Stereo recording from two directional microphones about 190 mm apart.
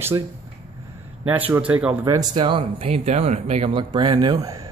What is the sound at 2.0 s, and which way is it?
Speech, 20° right (ahead or behind).